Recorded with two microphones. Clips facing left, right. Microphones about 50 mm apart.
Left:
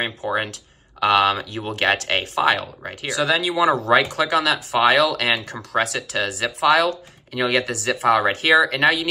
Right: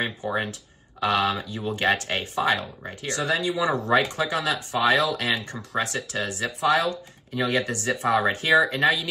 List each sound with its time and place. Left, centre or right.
0.2 s speech: left